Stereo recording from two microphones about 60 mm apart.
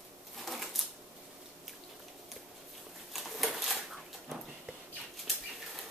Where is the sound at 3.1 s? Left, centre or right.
Centre.